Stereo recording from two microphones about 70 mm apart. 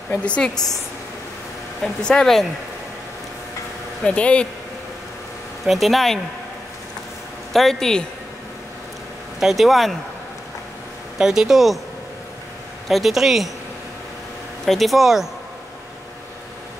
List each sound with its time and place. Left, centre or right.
0.1 s speech: centre
1.8 s speech: centre
4.0 s speech: centre
5.7 s a woman's voice: centre
7.5 s a woman's voice: centre
9.4 s a woman's voice: centre
11.1 s a woman's voice: centre
12.8 s a woman's voice: centre
14.7 s a woman's voice: centre